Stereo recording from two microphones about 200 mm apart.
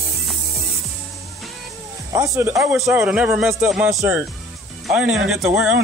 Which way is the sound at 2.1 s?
15° right (ahead or behind).